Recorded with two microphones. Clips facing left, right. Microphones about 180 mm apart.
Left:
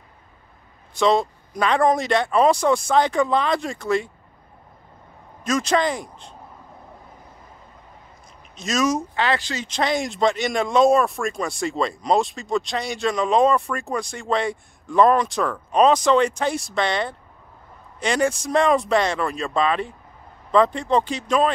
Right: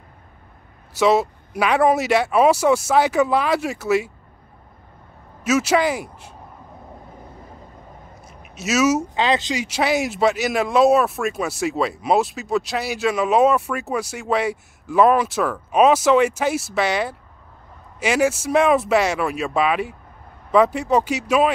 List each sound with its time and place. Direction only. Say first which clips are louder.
0.9 s speech: right 2 dB; 5° right (ahead or behind)
5.4 s speech: right 3 dB; 5° right (ahead or behind)
8.3 s a sound: right 4 dB; 5° right (ahead or behind)
9.1 s speech: right 3 dB; 20° right (ahead or behind)